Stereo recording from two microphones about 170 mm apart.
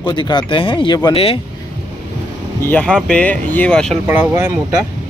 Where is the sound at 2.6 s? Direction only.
10° left (ahead or behind).